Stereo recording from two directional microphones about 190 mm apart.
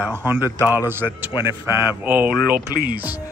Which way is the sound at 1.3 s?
20° left (ahead or behind).